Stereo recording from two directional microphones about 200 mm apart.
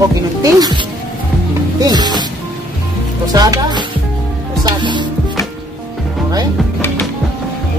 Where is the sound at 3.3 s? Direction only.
20° right (ahead or behind).